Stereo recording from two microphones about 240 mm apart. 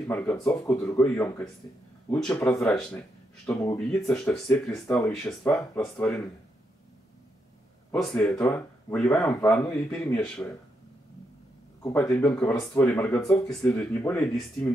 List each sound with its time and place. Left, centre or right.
0.1 s speech: centre
7.9 s speech: centre
11.8 s speech: centre